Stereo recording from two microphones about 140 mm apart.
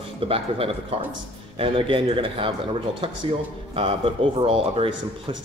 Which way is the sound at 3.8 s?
40° right (ahead or behind).